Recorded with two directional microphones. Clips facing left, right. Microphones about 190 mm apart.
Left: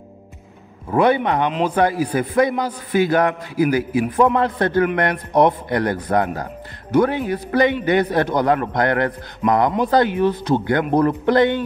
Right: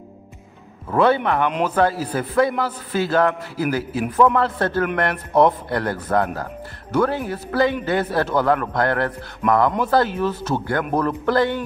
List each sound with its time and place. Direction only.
0.8 s a man's voice: 15° left (ahead or behind)